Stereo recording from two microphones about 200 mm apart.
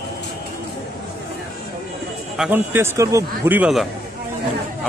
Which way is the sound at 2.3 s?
5° right (ahead or behind).